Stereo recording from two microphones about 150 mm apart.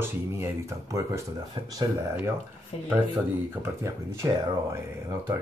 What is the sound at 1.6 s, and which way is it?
Speech, 30° right (ahead or behind).